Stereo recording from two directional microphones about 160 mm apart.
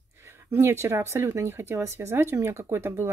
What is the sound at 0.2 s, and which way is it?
Speech, 15° right (ahead or behind).